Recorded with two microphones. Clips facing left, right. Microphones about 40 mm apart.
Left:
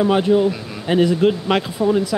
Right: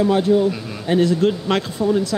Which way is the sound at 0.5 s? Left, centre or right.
Centre.